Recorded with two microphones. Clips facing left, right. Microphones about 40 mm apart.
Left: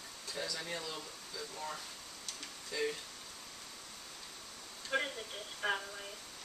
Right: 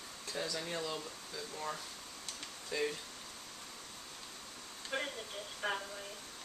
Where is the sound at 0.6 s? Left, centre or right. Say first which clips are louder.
Right 2 dB; centre.